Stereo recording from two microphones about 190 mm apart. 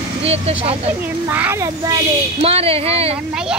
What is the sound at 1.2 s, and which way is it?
Speech, 10° right (ahead or behind).